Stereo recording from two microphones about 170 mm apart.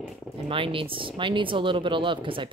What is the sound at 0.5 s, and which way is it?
A woman's voice, 30° right (ahead or behind).